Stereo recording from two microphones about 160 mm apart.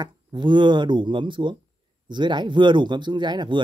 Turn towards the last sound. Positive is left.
turn(degrees=-30)  # may be behind; listen again after turning